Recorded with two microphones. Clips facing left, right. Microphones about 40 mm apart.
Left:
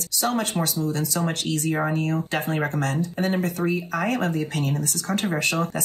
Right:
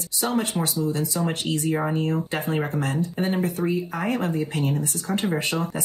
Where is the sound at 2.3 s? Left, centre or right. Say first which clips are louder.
Even; left.